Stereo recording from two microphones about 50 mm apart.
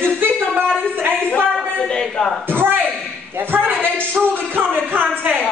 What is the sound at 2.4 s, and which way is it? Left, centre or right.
A man's voice, right.